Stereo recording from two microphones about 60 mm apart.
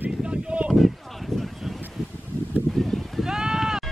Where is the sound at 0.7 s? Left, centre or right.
Centre.